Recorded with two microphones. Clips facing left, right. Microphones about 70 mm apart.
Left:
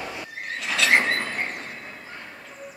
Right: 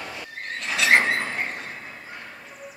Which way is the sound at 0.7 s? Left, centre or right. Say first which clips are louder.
Right 1 dB; centre.